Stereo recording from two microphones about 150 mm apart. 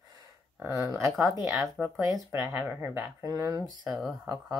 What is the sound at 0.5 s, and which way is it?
Speech, 20° right (ahead or behind).